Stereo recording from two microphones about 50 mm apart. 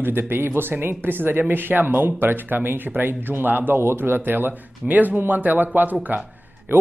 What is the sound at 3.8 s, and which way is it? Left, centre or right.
Speech, right.